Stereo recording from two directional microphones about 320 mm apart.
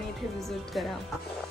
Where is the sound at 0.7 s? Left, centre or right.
Centre.